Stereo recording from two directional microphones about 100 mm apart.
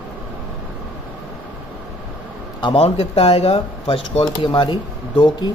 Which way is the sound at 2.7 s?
80° left.